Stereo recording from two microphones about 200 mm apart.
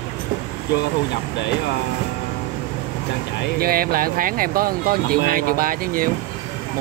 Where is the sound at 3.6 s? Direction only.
45° right (ahead or behind).